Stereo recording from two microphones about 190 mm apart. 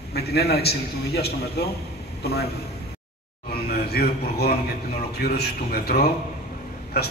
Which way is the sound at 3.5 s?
55° left (ahead or behind).